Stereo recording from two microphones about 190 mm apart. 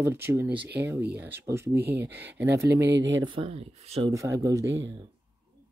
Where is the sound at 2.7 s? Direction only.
65° right (ahead or behind).